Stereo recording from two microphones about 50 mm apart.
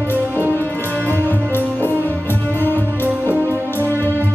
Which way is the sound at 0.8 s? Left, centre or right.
Right.